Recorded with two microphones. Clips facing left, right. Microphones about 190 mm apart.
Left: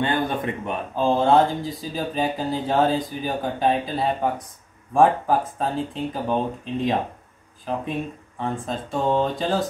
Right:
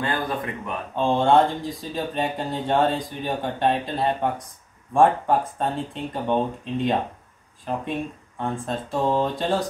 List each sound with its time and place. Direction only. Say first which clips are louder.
0.0 s a man's voice: left 3 dB; 25° left (ahead or behind)
0.9 s speech: even; centre (ahead or behind)
8.4 s speech: even; centre (ahead or behind)